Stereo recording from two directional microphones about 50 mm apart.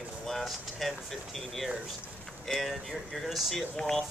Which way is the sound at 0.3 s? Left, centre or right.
Centre.